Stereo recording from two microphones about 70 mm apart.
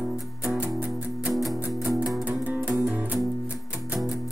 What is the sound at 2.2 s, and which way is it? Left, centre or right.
Music, right.